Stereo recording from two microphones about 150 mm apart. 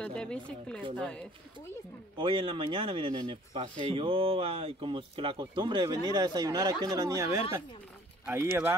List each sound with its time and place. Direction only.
0.0 s speech: 5° left (ahead or behind)
2.1 s a man's voice: 35° right (ahead or behind); by 8.7 s 15° right (ahead or behind)